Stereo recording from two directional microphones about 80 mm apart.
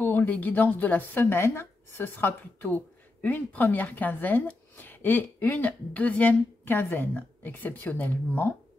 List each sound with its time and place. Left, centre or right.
0.0 s a woman's voice: left